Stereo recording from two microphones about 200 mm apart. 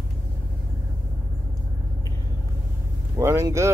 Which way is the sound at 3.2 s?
15° right (ahead or behind).